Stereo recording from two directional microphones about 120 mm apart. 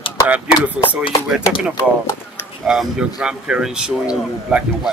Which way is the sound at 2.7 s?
5° right (ahead or behind).